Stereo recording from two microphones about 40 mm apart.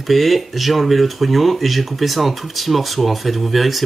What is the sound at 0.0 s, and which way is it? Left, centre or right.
Speech, centre.